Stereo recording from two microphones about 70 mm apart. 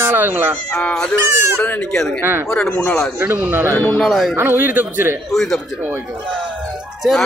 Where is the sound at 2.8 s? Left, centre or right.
Centre.